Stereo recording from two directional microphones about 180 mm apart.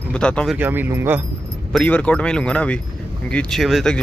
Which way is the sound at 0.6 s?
10° right (ahead or behind).